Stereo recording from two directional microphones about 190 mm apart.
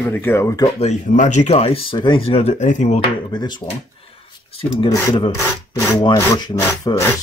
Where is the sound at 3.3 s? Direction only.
25° left (ahead or behind).